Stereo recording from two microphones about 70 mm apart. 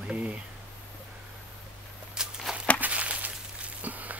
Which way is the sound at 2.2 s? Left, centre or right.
Centre.